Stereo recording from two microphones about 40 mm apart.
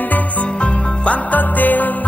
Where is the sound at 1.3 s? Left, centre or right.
Left.